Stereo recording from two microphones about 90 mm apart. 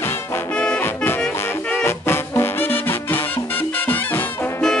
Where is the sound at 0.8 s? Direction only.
25° left (ahead or behind).